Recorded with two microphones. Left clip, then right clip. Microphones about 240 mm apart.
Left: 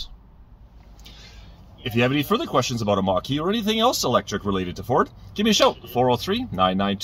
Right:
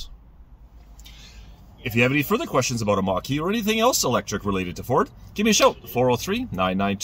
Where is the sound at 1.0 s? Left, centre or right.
Centre.